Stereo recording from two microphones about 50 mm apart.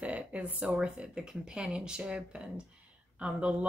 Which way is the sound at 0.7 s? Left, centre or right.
Centre.